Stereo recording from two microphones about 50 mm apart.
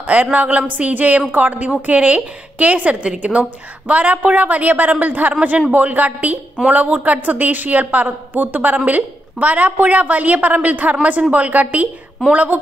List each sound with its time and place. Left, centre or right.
0.0 s a woman's voice: right
1.7 s a woman's voice: right